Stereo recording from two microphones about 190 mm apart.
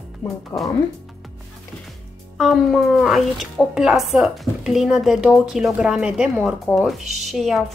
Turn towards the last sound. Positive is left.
turn(degrees=0)  # may be behind; listen again after turning